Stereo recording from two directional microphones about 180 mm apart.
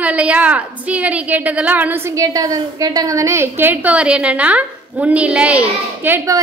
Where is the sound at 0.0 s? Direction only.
5° right (ahead or behind).